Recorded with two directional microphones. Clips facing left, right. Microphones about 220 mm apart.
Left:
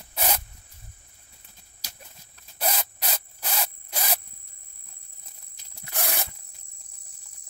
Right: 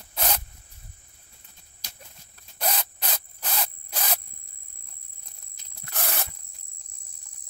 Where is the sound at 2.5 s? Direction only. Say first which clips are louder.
Left 1 dB; 5° left (ahead or behind).